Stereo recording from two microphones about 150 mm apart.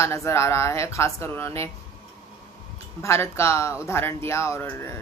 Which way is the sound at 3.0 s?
20° left (ahead or behind).